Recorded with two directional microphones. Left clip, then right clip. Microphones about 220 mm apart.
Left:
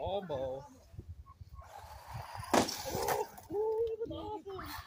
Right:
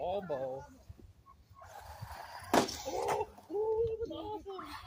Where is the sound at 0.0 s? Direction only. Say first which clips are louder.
Right 1 dB; 15° right (ahead or behind).